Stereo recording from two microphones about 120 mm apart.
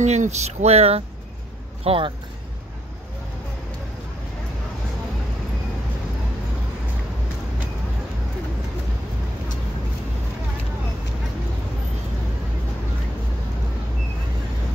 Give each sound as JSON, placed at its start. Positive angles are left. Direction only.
{"t": 0.0, "sound": "speech", "side_deg": -70}
{"t": 1.9, "sound": "speech", "side_deg": -45}